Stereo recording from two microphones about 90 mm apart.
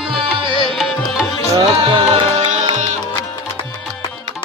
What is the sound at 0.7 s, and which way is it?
Music, 5° left (ahead or behind).